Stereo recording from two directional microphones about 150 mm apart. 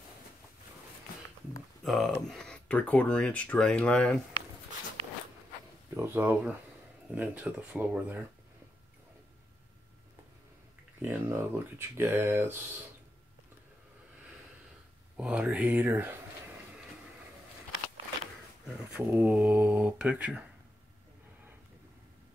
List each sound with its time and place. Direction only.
1.9 s speech: centre (ahead or behind)
5.9 s speech: 15° right (ahead or behind)
11.0 s speech: 15° right (ahead or behind)
15.1 s speech: 5° right (ahead or behind)
18.9 s speech: 10° right (ahead or behind)